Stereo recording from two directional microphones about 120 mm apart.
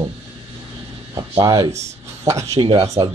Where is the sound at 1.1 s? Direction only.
30° right (ahead or behind).